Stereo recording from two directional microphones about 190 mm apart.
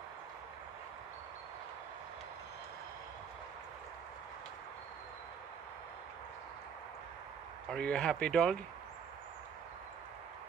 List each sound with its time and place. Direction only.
7.7 s speech: 5° left (ahead or behind)